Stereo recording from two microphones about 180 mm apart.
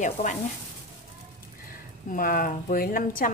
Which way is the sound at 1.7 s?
50° left (ahead or behind).